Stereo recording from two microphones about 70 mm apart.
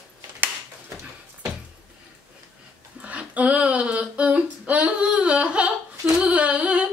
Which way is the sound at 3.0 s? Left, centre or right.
Centre.